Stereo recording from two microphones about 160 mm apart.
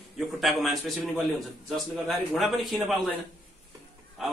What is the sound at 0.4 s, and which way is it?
Speech, centre (ahead or behind).